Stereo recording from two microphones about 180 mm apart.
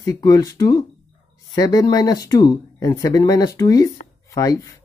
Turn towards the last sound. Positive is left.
turn(degrees=20)  # may be behind; listen again after turning